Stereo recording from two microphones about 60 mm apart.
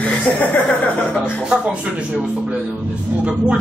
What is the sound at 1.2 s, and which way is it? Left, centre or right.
Speech, centre.